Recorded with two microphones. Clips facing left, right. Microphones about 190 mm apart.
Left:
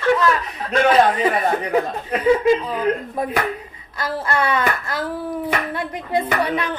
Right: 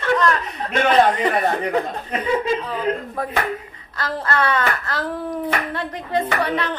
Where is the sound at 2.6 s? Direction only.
10° left (ahead or behind).